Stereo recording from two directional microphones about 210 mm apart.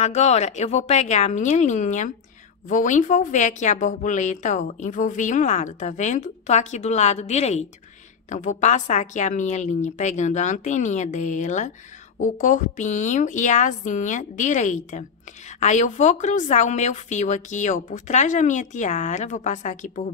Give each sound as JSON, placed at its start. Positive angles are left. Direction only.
{"t": 0.0, "sound": "a woman's voice", "side_deg": 30}